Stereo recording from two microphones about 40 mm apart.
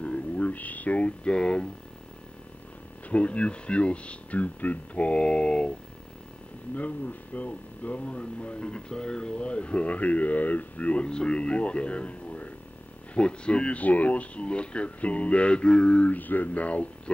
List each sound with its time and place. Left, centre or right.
0.0 s a sound: left
3.1 s speech: left
6.7 s speech: left
16.1 s speech: left